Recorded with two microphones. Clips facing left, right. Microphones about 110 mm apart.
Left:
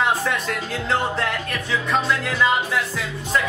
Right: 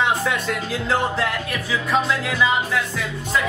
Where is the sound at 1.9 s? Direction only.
5° right (ahead or behind).